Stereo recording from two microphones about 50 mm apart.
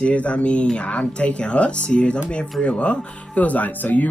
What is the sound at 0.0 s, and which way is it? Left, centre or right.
Music, left.